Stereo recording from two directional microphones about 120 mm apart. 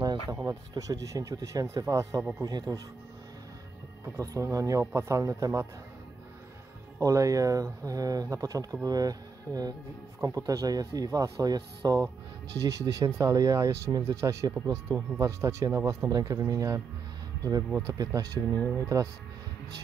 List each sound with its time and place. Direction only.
0.0 s music: 35° right (ahead or behind)
0.5 s speech: 30° right (ahead or behind)
4.0 s speech: 25° right (ahead or behind)
7.0 s speech: 30° right (ahead or behind)
18.5 s speech: 15° left (ahead or behind)